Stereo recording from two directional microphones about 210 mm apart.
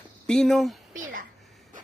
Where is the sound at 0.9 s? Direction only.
40° right (ahead or behind).